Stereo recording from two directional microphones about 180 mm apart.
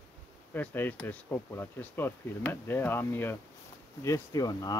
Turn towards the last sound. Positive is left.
turn(degrees=20)  # may be behind; listen again after turning